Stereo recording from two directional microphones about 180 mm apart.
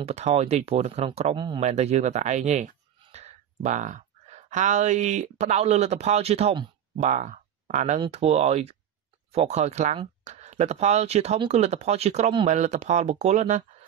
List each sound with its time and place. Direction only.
0.0 s speech: 35° right (ahead or behind)
7.1 s speech: 45° right (ahead or behind)